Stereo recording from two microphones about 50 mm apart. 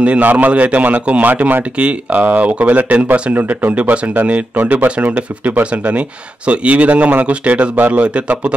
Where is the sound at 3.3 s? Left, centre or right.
Right.